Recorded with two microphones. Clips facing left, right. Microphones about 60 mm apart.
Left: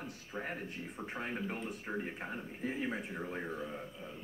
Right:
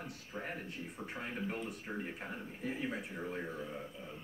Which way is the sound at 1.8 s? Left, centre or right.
Centre.